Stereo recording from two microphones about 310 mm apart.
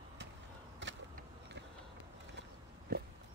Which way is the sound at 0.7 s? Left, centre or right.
Right.